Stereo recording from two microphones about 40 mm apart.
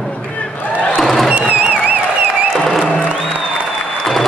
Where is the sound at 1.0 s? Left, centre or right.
Centre.